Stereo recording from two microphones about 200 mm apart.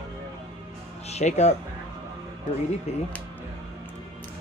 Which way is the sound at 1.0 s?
35° left (ahead or behind).